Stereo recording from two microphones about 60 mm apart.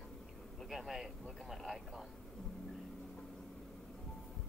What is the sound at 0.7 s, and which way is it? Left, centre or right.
Speech, centre.